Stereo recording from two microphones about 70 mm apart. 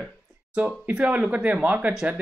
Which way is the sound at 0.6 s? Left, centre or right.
Centre.